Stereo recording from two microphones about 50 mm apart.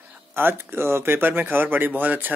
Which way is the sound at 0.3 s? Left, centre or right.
Right.